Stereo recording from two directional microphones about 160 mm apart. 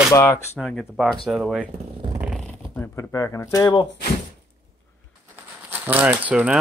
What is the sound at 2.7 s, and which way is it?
Speech, 20° left (ahead or behind).